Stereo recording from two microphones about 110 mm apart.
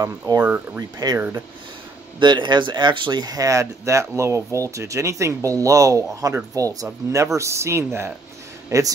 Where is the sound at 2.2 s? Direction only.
45° right (ahead or behind).